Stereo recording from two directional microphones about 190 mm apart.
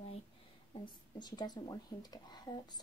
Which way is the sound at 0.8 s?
20° left (ahead or behind).